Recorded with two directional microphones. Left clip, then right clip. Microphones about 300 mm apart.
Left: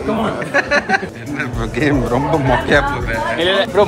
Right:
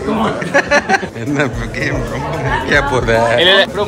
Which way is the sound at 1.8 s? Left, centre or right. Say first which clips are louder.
Left 4 dB; centre.